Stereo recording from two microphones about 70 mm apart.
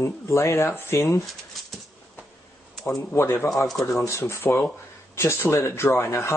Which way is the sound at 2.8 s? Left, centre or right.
Left.